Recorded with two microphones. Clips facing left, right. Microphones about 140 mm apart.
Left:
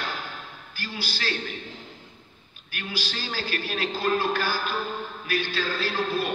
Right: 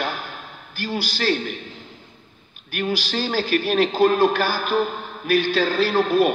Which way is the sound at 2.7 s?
55° right (ahead or behind).